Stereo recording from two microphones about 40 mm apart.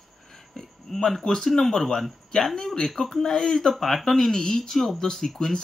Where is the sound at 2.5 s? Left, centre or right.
Centre.